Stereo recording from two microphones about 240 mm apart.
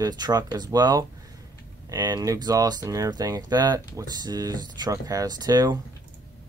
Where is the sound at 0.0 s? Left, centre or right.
Centre.